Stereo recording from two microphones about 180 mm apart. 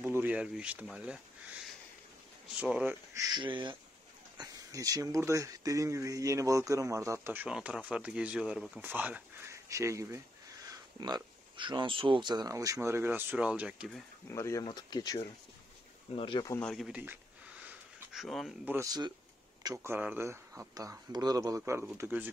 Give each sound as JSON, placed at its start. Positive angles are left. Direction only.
{"t": 0.0, "sound": "speech", "side_deg": -10}
{"t": 3.3, "sound": "speech", "side_deg": -25}
{"t": 14.3, "sound": "speech", "side_deg": 15}
{"t": 16.5, "sound": "a sound", "side_deg": 0}
{"t": 18.7, "sound": "speech", "side_deg": -20}